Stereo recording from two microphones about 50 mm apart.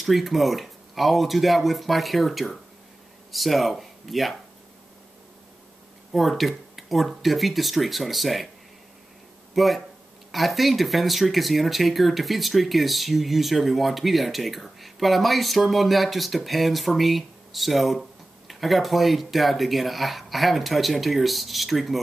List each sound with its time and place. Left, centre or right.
0.0 s speech: centre
6.1 s speech: centre
9.6 s speech: centre